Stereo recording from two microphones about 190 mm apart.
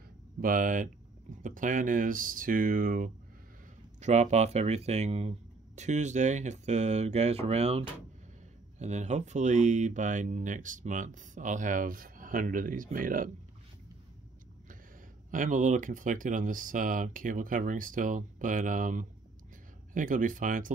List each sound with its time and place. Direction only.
0.4 s speech: 45° right (ahead or behind)
15.3 s speech: 45° right (ahead or behind)